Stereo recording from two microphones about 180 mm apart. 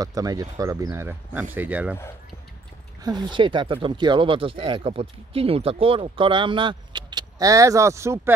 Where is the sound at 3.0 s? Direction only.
25° right (ahead or behind).